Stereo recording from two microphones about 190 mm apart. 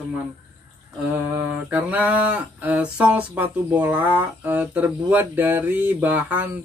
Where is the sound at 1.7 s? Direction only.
10° right (ahead or behind).